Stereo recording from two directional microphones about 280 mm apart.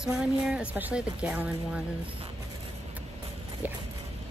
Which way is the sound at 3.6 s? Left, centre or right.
Centre.